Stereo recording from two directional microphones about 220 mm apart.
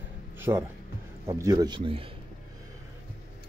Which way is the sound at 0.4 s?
10° right (ahead or behind).